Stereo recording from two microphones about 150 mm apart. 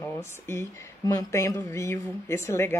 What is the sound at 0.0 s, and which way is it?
Speech, 15° left (ahead or behind).